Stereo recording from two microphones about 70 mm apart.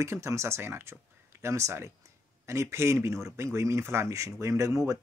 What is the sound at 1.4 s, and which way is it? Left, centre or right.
Speech, right.